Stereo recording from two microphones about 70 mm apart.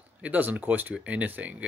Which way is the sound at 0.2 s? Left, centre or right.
Right.